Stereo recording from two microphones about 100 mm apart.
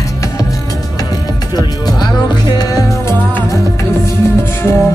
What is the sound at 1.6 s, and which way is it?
Music, 45° left (ahead or behind).